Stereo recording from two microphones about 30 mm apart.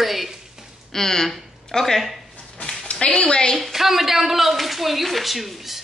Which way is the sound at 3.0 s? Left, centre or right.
Left.